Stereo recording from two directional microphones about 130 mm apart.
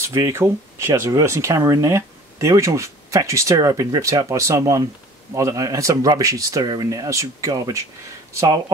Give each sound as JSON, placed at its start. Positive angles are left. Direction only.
{"t": 0.0, "sound": "speech", "side_deg": -20}